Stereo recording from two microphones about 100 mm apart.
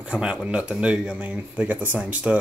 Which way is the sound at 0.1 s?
10° right (ahead or behind).